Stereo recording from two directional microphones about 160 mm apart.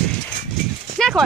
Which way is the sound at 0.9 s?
Centre (ahead or behind).